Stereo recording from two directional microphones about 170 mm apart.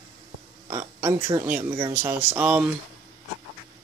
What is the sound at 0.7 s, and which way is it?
Speech, 20° right (ahead or behind).